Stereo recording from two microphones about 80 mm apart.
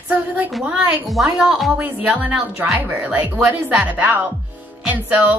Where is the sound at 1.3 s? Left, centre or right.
Centre.